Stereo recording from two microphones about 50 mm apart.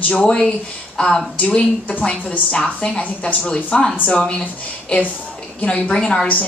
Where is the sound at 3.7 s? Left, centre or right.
Centre.